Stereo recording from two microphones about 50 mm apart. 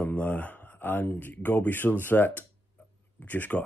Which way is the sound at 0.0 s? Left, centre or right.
Left.